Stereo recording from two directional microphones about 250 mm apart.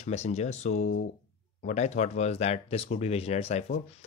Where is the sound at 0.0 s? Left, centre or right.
Left.